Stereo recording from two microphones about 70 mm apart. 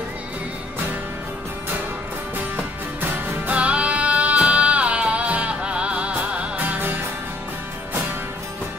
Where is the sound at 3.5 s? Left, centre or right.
Centre.